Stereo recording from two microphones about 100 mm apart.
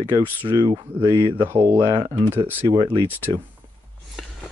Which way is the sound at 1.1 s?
25° right (ahead or behind).